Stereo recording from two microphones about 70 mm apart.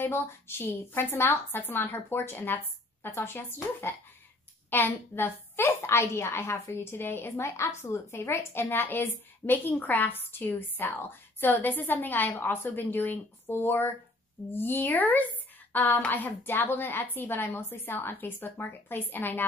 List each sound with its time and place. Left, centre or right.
0.0 s speech: left
4.6 s a woman's voice: left